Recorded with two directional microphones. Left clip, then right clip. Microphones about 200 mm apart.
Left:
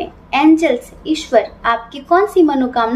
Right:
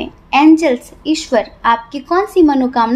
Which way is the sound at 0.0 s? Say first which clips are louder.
Right 3 dB; 50° right (ahead or behind).